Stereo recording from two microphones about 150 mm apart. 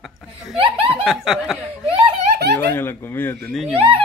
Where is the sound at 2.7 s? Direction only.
15° left (ahead or behind).